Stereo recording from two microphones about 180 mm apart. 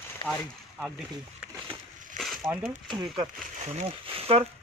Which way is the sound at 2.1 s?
Centre (ahead or behind).